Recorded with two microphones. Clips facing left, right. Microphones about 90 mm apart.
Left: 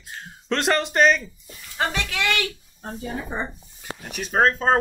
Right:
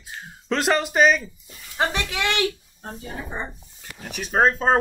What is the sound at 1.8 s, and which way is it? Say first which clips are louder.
Speech: right 1 dB; 15° right (ahead or behind).